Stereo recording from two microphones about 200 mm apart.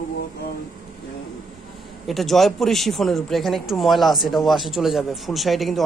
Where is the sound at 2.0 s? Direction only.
Centre (ahead or behind).